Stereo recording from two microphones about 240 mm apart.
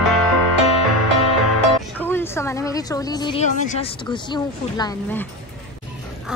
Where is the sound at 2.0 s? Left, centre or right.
Centre.